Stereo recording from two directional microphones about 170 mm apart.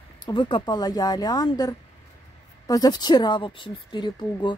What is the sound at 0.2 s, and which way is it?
Speech, 25° left (ahead or behind).